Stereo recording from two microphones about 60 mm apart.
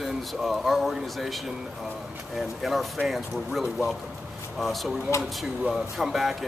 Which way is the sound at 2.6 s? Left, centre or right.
Centre.